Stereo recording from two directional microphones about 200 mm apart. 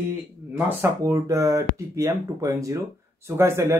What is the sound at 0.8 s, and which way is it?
A man's voice, 15° right (ahead or behind).